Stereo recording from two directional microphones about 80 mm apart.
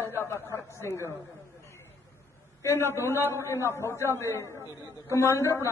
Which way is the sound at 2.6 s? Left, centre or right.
Left.